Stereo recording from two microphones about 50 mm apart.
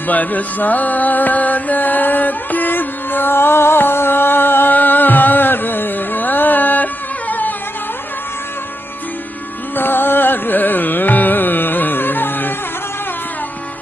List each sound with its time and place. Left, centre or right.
0.1 s music: left
9.8 s carnatic music: left